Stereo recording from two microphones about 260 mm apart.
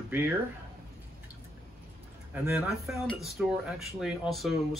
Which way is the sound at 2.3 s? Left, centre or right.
Centre.